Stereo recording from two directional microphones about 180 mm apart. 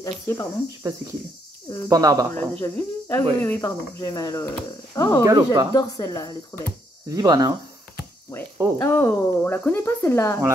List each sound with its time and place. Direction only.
0.0 s speech: 20° left (ahead or behind)
1.9 s speech: 20° right (ahead or behind)
2.3 s speech: 10° left (ahead or behind)
5.2 s speech: 20° right (ahead or behind)
5.8 s speech: 20° left (ahead or behind)
7.1 s speech: 20° right (ahead or behind)
8.7 s speech: 15° left (ahead or behind)